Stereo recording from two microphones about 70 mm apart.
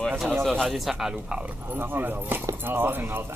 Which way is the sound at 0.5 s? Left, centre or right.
Centre.